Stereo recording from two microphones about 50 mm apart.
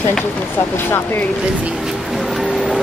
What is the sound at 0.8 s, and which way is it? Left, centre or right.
Speech, left.